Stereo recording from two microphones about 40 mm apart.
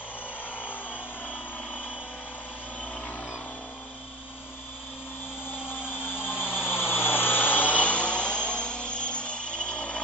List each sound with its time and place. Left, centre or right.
1.2 s vehicle: left
5.7 s vehicle: left